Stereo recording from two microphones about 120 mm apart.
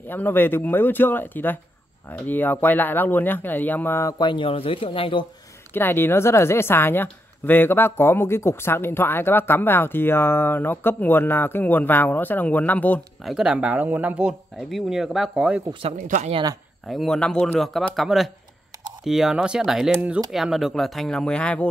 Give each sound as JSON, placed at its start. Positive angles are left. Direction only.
{"t": 0.0, "sound": "a woman's voice", "side_deg": 15}
{"t": 4.2, "sound": "speech", "side_deg": 45}
{"t": 5.7, "sound": "a woman's voice", "side_deg": 20}
{"t": 13.2, "sound": "speech", "side_deg": -5}
{"t": 16.0, "sound": "speech", "side_deg": -90}
{"t": 16.8, "sound": "speech", "side_deg": 5}